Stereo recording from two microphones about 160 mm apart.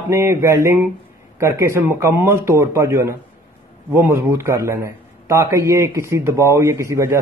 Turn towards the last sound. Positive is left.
turn(degrees=-20)  # may be behind; listen again after turning